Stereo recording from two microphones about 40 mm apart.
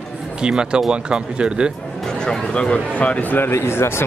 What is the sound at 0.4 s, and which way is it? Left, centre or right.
Speech, right.